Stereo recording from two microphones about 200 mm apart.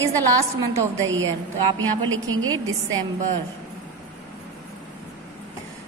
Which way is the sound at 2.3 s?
90° right.